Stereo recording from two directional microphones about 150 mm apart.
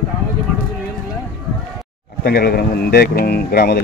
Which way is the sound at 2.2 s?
90° left.